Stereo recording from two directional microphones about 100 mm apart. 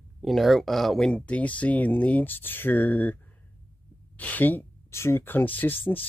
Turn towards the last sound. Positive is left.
turn(degrees=20)  # may be behind; listen again after turning